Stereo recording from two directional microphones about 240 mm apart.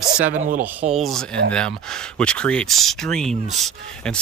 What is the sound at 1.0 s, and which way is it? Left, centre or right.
Speech, centre.